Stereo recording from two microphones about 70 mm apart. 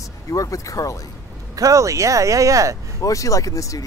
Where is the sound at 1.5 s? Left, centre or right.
Right.